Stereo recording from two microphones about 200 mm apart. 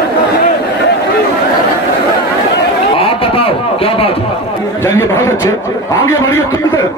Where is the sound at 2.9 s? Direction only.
25° left (ahead or behind).